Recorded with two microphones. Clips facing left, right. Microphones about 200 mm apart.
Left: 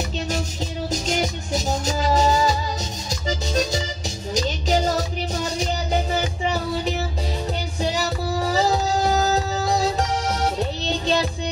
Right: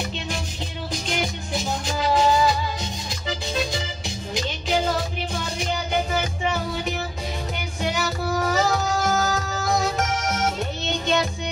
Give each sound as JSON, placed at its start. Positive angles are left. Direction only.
{"t": 1.0, "sound": "music", "side_deg": 40}